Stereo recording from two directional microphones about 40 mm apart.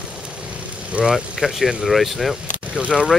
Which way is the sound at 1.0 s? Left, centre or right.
Right.